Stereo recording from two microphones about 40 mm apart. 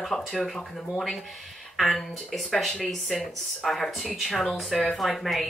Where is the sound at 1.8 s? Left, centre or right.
Centre.